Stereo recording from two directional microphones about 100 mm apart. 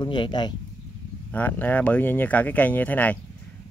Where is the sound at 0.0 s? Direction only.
50° left (ahead or behind).